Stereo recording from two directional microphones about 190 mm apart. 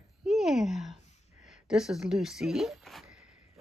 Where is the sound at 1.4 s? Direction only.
5° right (ahead or behind).